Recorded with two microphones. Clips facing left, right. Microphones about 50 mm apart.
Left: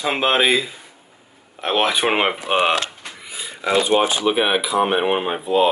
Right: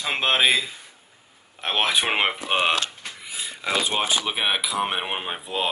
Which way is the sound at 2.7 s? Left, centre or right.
Left.